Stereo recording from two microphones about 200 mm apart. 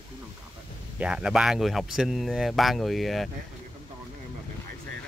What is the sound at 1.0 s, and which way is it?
Speech, 5° right (ahead or behind).